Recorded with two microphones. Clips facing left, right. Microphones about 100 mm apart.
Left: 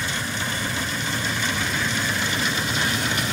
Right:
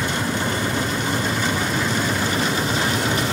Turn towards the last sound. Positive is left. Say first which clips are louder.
# right 4 dB
turn(degrees=-35)  # may be behind; listen again after turning